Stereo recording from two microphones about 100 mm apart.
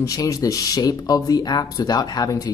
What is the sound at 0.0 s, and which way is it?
Speech, 35° left (ahead or behind).